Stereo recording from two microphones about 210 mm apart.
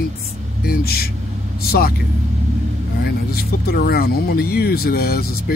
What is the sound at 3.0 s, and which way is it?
Speech, 45° left (ahead or behind).